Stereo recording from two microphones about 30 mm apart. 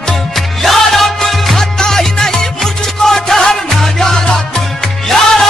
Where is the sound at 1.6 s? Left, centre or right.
Centre.